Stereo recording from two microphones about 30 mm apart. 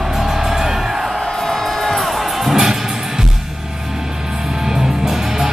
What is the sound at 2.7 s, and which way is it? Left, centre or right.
Music, centre.